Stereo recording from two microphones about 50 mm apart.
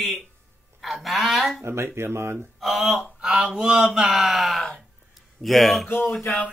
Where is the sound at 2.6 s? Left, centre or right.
Centre.